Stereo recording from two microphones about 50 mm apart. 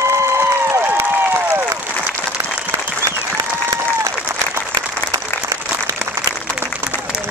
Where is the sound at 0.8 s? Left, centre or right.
Right.